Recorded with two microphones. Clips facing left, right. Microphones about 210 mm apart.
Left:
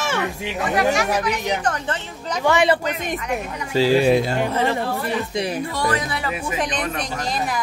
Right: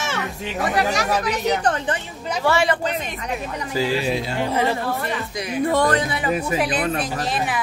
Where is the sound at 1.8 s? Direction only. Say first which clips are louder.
Right 1 dB; 15° right (ahead or behind).